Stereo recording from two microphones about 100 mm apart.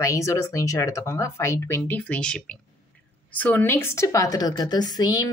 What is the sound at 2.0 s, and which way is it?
A woman's voice, 10° left (ahead or behind).